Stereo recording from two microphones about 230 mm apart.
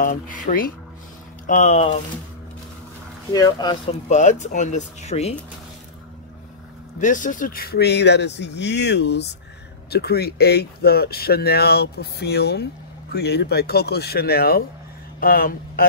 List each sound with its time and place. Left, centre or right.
0.0 s speech: left
3.3 s speech: centre
4.1 s speech: left
7.0 s speech: left